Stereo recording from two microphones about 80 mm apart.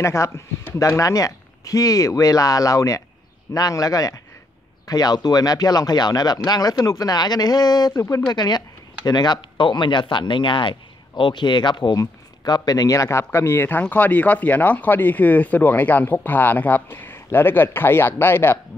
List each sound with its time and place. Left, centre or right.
0.0 s speech: left
12.0 s speech: left